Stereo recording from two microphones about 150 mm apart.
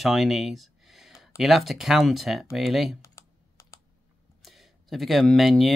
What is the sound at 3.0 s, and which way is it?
Computer keyboard, 20° left (ahead or behind).